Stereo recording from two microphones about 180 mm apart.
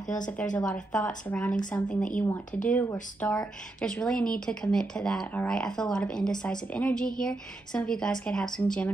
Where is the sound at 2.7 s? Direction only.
10° left (ahead or behind).